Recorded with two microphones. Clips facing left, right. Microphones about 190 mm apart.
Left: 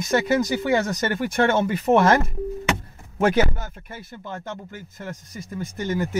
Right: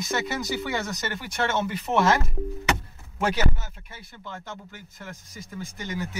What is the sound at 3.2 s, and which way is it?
Speech, 50° left (ahead or behind).